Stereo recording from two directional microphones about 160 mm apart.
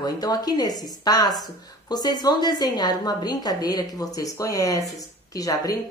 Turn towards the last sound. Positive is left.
turn(degrees=20)  # may be behind; listen again after turning